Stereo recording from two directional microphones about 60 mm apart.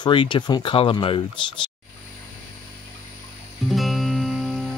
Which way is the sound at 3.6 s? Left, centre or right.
Centre.